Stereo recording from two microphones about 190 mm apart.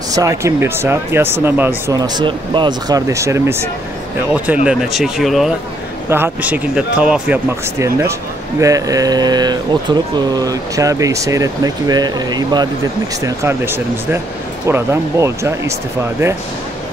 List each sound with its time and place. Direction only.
0.1 s speech: 15° right (ahead or behind)
4.6 s speech: centre (ahead or behind)
6.0 s speech: 10° right (ahead or behind)